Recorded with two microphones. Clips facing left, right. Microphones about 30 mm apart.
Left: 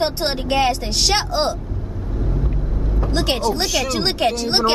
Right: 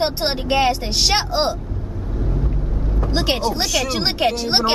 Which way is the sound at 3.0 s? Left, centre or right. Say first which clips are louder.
Even; centre.